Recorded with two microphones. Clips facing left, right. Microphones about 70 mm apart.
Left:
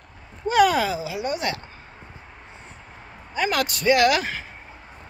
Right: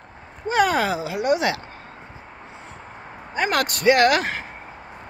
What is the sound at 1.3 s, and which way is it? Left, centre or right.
Speech, right.